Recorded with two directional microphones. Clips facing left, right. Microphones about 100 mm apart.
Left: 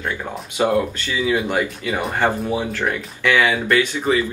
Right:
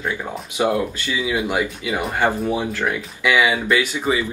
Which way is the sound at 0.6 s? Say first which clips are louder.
Left 2 dB; 15° right (ahead or behind).